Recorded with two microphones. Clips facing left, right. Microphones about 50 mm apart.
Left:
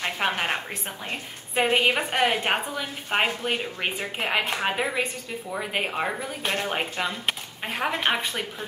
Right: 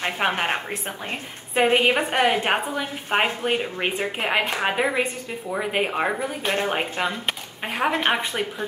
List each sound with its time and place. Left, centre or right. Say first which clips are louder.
0.0 s a woman's voice: right 3 dB; centre